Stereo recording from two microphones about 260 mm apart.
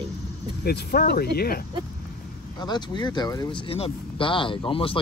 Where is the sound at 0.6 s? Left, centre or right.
Left.